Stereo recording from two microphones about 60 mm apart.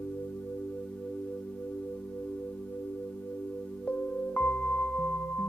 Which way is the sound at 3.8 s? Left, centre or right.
Left.